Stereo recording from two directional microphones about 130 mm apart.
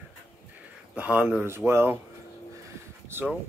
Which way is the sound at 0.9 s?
10° right (ahead or behind).